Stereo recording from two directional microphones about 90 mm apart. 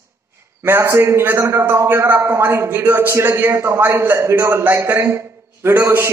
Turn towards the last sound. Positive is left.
turn(degrees=-30)  # may be behind; listen again after turning